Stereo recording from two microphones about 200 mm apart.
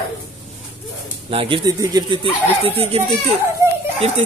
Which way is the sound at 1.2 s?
25° right (ahead or behind).